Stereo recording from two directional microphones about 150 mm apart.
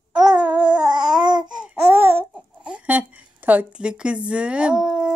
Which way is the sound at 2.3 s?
5° right (ahead or behind).